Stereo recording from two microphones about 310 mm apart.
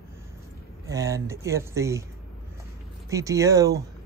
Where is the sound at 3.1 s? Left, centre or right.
Centre.